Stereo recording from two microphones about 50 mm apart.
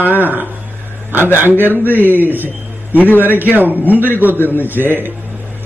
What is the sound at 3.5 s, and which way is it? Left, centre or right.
A man's voice, right.